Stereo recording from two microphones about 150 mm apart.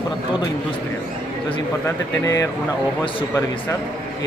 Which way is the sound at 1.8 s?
20° left (ahead or behind).